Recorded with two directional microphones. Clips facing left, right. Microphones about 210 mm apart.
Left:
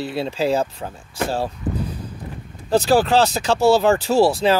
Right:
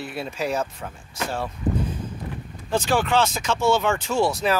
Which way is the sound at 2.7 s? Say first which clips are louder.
Left 6 dB; 35° left (ahead or behind).